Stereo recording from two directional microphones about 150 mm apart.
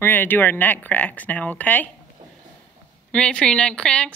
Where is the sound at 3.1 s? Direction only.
5° left (ahead or behind).